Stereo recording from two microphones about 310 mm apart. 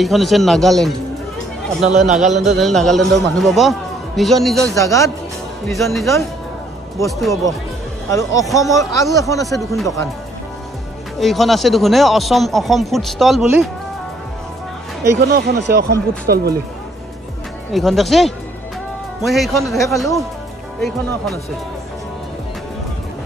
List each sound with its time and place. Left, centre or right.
0.0 s speech: centre
1.9 s a man's voice: right
2.5 s a man's voice: centre
11.1 s speech: centre
15.2 s speech: right
17.7 s speech: centre